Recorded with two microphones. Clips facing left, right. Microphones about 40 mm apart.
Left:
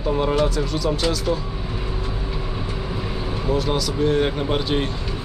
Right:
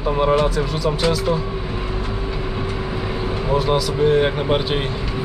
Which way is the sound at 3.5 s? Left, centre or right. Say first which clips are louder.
Right 4 dB; centre.